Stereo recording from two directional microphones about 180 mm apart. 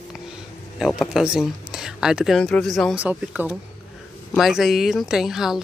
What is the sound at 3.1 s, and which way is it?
Speech, 10° right (ahead or behind).